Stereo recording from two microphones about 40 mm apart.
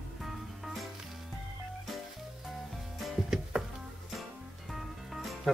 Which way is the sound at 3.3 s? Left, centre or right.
Centre.